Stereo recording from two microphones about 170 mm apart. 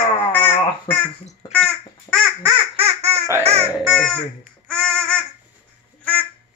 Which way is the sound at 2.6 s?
35° right (ahead or behind).